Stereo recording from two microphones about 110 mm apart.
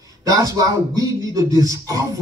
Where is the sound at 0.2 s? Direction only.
35° right (ahead or behind).